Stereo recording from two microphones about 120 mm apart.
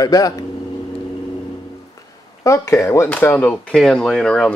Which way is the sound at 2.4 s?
25° left (ahead or behind).